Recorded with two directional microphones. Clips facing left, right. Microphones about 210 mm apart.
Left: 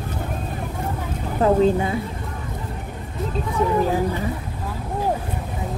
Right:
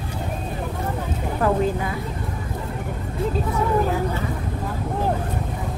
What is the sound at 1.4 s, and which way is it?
Speech, 25° left (ahead or behind).